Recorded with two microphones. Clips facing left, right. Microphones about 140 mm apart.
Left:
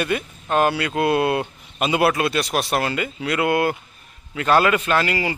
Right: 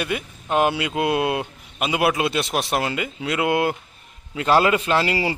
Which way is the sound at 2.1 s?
20° right (ahead or behind).